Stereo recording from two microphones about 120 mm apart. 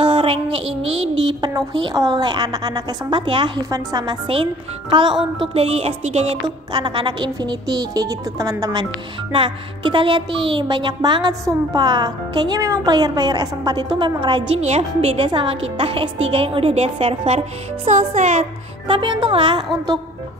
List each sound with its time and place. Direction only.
0.0 s child singing: 45° right (ahead or behind)
0.8 s child singing: 55° right (ahead or behind)
2.0 s speech: 30° right (ahead or behind)
5.4 s music: 55° right (ahead or behind)
6.4 s speech: 40° right (ahead or behind)
9.3 s a woman's voice: 45° right (ahead or behind)
14.6 s a woman's voice: 60° right (ahead or behind)
17.3 s speech: 75° right (ahead or behind)
18.4 s a woman's voice: 45° right (ahead or behind)